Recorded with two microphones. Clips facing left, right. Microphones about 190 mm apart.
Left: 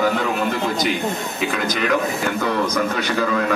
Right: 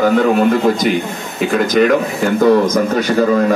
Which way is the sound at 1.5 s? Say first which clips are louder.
Right 10 dB; 45° right (ahead or behind).